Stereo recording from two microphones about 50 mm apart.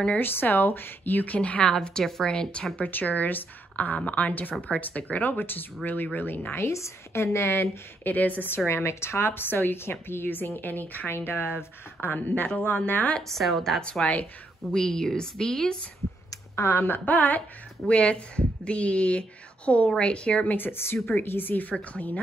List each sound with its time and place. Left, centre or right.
0.2 s a woman's voice: left
1.8 s a woman's voice: centre
2.7 s a woman's voice: left
6.5 s a woman's voice: left
8.0 s a woman's voice: left
8.5 s a woman's voice: left
11.1 s a woman's voice: left
13.3 s a woman's voice: centre
16.5 s a woman's voice: left
17.0 s a woman's voice: left
17.8 s speech: left
20.5 s a woman's voice: left
21.6 s speech: left